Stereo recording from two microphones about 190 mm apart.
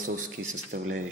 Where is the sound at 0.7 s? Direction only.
55° right (ahead or behind).